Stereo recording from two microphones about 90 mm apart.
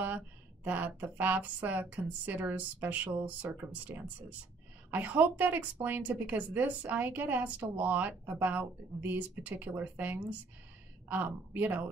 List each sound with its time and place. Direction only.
0.7 s a woman's voice: 20° right (ahead or behind)